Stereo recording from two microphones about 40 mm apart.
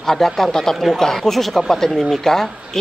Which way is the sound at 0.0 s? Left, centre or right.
Centre.